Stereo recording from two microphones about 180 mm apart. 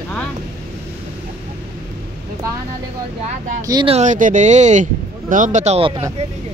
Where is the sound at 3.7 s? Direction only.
25° right (ahead or behind).